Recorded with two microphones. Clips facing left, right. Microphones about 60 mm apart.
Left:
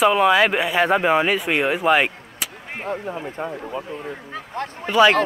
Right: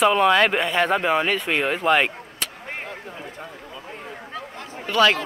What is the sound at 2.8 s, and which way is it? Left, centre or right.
Speech, left.